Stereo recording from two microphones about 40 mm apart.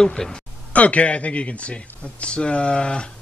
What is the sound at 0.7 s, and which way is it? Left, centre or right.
Speech, left.